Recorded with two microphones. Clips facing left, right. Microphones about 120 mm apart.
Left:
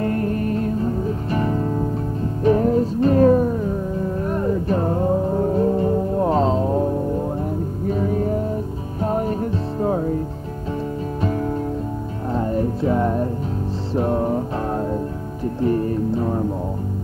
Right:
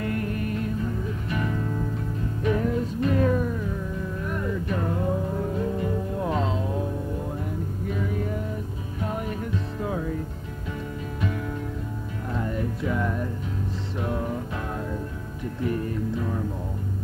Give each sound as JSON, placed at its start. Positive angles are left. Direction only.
{"t": 0.0, "sound": "music", "side_deg": 35}
{"t": 11.1, "sound": "music", "side_deg": 35}